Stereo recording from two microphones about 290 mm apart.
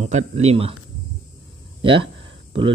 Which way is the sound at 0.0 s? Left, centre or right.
Right.